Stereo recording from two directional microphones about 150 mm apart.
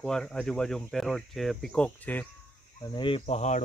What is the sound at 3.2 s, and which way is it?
Speech, 50° left (ahead or behind).